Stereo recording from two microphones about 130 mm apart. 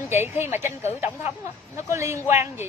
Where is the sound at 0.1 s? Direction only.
20° right (ahead or behind).